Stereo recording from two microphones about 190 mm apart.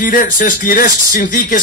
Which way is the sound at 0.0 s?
45° left (ahead or behind).